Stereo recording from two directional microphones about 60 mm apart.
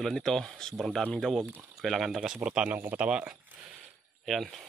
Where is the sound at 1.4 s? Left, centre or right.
Right.